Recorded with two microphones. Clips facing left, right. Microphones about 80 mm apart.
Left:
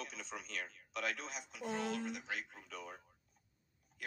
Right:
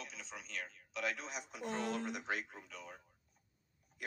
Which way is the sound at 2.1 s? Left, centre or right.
Right.